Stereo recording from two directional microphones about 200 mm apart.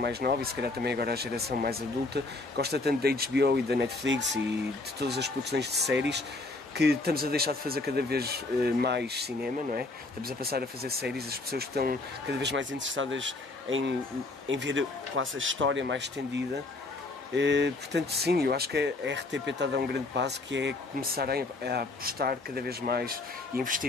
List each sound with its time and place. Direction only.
0.0 s speech: 55° right (ahead or behind)